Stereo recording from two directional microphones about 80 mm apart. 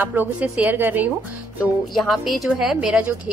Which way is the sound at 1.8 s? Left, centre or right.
Centre.